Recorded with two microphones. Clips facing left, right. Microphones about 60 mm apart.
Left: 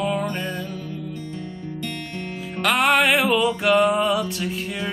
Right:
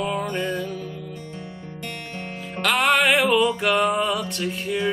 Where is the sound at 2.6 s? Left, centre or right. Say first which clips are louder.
Left 1 dB; centre.